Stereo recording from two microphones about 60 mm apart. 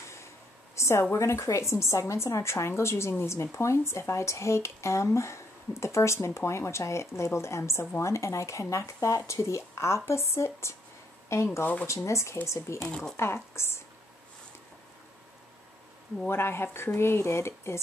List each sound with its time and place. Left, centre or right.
0.7 s a sound: left
1.1 s a woman's voice: left
11.6 s speech: left
11.9 s a woman's voice: left
12.8 s speech: centre
13.1 s a woman's voice: left
16.3 s a woman's voice: left